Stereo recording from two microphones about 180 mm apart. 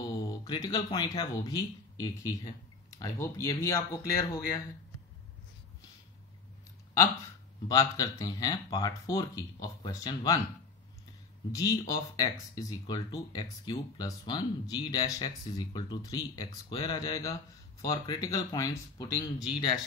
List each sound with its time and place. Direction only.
0.0 s a man's voice: 25° left (ahead or behind)
7.6 s speech: 20° left (ahead or behind)
11.5 s speech: 20° left (ahead or behind)